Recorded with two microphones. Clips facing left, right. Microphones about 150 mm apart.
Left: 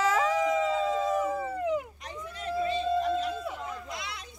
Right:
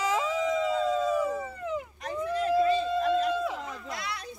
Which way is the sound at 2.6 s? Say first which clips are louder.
Right 2 dB; 45° right (ahead or behind).